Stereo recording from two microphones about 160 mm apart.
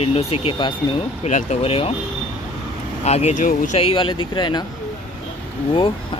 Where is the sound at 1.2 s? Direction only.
45° left (ahead or behind).